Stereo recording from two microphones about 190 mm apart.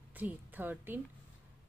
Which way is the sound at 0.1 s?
10° right (ahead or behind).